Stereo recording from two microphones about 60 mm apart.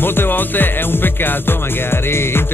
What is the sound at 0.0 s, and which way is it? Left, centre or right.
Speech, left.